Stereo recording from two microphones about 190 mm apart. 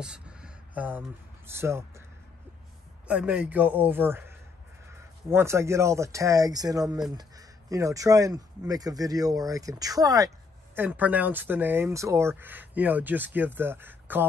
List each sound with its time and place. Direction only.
0.0 s a sound: 5° right (ahead or behind)
1.5 s speech: 15° right (ahead or behind)
3.1 s speech: 5° right (ahead or behind)